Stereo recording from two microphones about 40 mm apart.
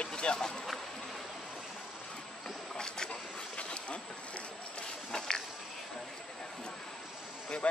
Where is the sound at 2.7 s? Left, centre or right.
Centre.